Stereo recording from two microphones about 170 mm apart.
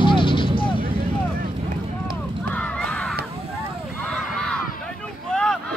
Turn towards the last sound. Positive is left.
turn(degrees=5)  # may be behind; listen again after turning